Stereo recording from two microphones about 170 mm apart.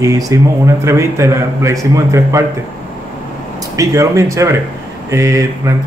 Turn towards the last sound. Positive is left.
turn(degrees=-20)  # may be behind; listen again after turning